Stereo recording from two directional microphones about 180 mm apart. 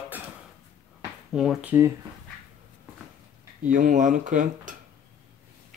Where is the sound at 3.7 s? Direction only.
45° right (ahead or behind).